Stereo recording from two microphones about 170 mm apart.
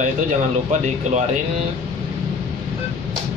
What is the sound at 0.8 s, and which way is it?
Speech, 45° right (ahead or behind).